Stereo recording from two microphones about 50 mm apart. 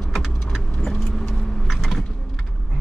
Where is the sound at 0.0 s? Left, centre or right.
Centre.